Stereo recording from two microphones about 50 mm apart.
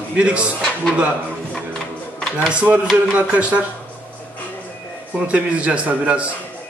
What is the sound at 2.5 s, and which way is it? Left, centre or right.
A man's voice, right.